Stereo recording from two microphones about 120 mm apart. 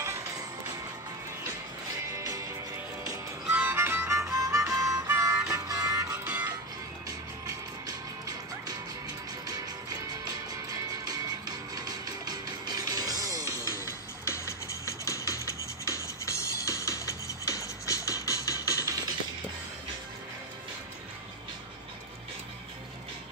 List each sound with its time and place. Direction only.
2.1 s music: 25° right (ahead or behind)
3.4 s music: 10° right (ahead or behind)
6.2 s music: 10° right (ahead or behind)
7.1 s music: 30° right (ahead or behind)
13.7 s music: 25° left (ahead or behind)